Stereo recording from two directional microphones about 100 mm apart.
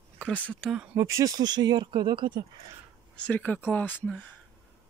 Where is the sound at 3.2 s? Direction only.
15° left (ahead or behind).